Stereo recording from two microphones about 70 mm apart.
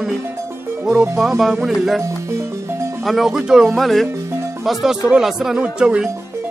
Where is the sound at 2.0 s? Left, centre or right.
Right.